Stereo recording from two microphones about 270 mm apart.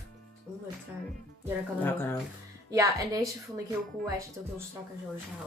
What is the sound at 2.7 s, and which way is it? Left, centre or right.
Speech, centre.